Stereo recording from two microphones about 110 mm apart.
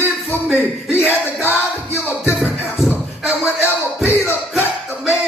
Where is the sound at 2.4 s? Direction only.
Centre (ahead or behind).